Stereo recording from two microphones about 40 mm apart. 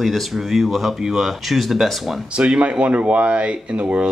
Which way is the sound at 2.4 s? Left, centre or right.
Right.